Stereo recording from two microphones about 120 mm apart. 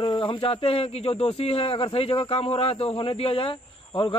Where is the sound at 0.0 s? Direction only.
40° left (ahead or behind).